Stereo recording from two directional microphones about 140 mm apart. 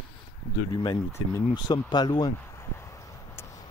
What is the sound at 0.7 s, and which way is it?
Speech, 30° left (ahead or behind).